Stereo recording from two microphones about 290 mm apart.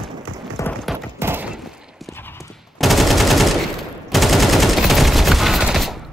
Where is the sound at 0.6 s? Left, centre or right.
Centre.